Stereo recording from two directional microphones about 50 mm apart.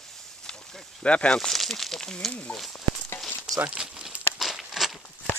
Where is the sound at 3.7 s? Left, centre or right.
Centre.